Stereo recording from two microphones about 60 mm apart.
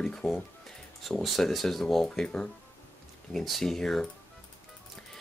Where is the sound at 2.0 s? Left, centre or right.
Centre.